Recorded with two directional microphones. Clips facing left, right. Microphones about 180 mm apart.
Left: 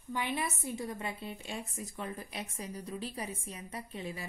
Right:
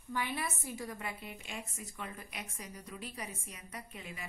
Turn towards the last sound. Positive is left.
turn(degrees=35)  # may be behind; listen again after turning